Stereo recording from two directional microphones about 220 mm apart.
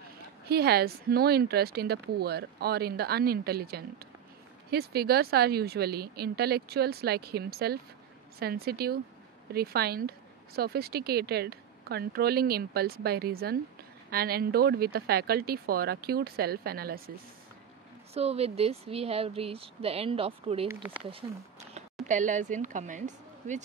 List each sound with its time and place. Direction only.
0.5 s speech: 45° right (ahead or behind)
18.1 s speech: 25° right (ahead or behind)